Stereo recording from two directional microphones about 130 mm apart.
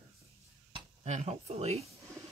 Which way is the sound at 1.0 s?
55° right (ahead or behind).